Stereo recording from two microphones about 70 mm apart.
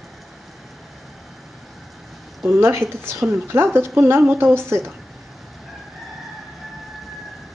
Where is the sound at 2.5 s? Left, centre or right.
Right.